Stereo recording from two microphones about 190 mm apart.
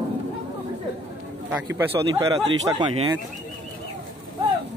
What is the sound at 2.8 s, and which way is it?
Speech, 25° right (ahead or behind).